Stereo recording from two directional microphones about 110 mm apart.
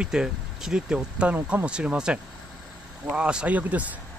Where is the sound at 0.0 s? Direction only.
5° right (ahead or behind).